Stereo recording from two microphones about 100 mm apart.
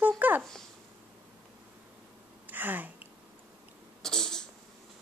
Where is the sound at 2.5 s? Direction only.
20° right (ahead or behind).